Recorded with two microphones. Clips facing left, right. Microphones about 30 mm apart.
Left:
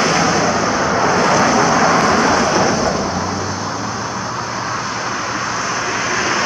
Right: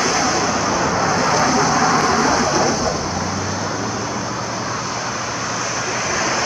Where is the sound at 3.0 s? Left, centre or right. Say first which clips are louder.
Left 3 dB; centre.